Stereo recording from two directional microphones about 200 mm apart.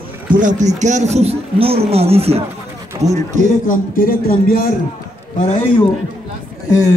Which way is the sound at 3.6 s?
45° left (ahead or behind).